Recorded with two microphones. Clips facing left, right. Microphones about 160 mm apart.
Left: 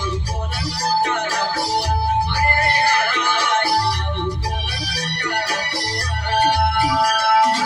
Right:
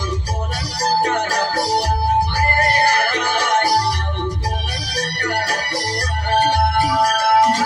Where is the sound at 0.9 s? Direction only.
40° right (ahead or behind).